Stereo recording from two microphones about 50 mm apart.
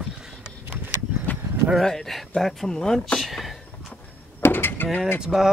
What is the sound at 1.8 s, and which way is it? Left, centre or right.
Speech, centre.